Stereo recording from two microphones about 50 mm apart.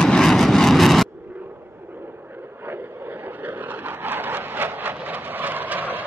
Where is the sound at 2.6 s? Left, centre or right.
Right.